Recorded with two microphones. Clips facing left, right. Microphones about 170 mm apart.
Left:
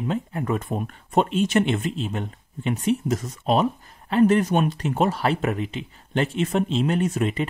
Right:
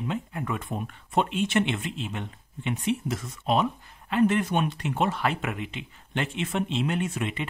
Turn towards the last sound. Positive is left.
turn(degrees=40)  # may be behind; listen again after turning